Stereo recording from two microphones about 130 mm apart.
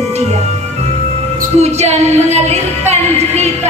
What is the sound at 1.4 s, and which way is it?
Music, 60° right (ahead or behind).